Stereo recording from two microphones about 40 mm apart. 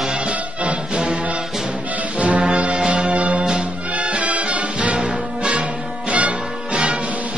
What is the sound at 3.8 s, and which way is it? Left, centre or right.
Music, right.